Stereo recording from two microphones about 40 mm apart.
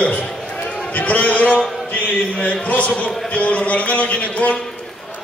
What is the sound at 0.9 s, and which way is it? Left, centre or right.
A man's voice, left.